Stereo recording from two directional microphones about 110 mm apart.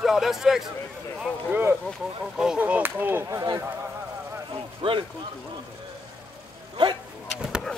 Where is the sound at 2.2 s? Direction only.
5° right (ahead or behind).